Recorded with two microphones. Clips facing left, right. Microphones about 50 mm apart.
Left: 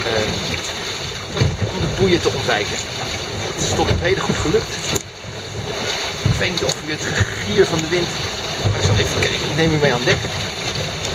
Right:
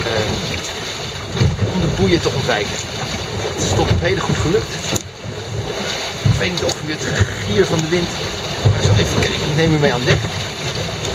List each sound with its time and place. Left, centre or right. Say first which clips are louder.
0.0 s boat: right 1 dB; centre
1.4 s boat: right 3 dB; centre
3.6 s speech: even; centre
6.4 s speech: right 1 dB; centre